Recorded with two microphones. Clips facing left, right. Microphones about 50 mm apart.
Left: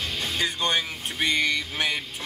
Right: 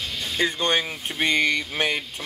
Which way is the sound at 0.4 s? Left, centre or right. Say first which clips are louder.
Right 4 dB; right.